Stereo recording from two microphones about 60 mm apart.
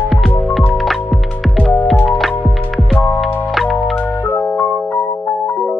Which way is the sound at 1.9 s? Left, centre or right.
Left.